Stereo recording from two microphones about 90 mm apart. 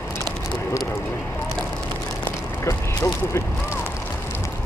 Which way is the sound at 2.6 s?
35° left (ahead or behind).